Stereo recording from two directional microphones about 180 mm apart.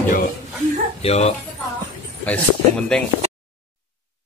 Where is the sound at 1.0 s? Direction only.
35° left (ahead or behind).